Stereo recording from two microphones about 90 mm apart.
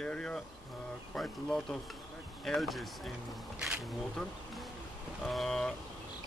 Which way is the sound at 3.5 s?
15° right (ahead or behind).